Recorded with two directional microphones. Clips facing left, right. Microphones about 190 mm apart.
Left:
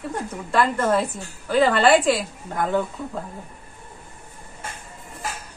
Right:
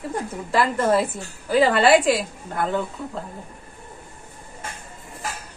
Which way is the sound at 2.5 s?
10° left (ahead or behind).